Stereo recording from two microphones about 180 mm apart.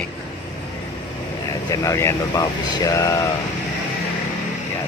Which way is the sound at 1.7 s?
15° left (ahead or behind).